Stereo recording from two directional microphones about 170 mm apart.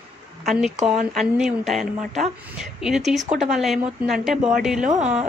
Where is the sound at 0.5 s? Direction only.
Centre (ahead or behind).